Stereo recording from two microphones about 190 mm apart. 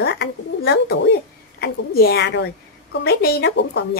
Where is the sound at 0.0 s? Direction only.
65° left (ahead or behind).